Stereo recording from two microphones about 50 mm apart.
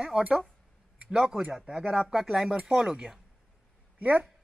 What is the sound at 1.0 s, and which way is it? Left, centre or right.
Speech, centre.